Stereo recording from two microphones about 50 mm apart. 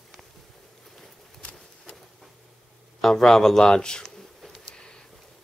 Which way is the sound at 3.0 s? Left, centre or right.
Centre.